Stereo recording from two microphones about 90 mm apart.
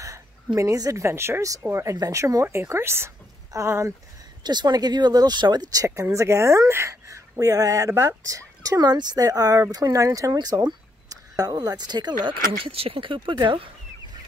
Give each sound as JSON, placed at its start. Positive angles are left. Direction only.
{"t": 0.6, "sound": "speech", "side_deg": -35}
{"t": 4.4, "sound": "speech", "side_deg": -55}
{"t": 5.9, "sound": "speech", "side_deg": -30}
{"t": 10.3, "sound": "speech", "side_deg": -50}
{"t": 12.6, "sound": "speech", "side_deg": -90}